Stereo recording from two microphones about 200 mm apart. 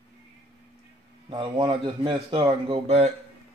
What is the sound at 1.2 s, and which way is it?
A man's voice, 25° right (ahead or behind).